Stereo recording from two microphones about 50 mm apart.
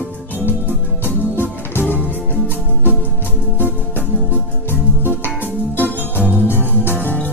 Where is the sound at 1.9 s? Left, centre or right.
Right.